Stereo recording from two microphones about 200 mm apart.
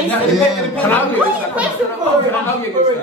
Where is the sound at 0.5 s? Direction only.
5° left (ahead or behind).